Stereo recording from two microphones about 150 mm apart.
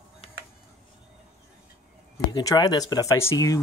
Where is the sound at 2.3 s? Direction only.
30° left (ahead or behind).